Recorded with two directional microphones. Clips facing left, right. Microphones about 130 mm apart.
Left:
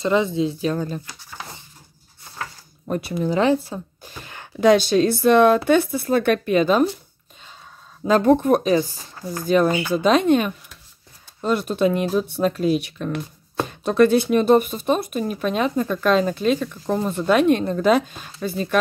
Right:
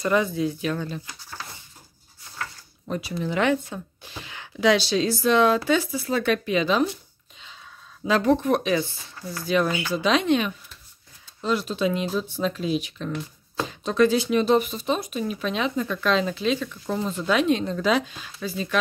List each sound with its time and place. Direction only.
0.0 s speech: 25° left (ahead or behind); by 1.0 s 40° left (ahead or behind)
2.9 s speech: 50° left (ahead or behind)
3.3 s speech: 35° left (ahead or behind)
8.0 s speech: 50° left (ahead or behind)